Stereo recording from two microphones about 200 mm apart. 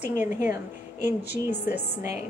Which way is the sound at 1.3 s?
55° left (ahead or behind).